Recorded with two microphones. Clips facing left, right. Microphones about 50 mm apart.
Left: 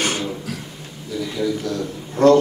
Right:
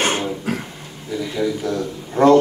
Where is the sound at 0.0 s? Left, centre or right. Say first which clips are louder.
Right 3 dB; right.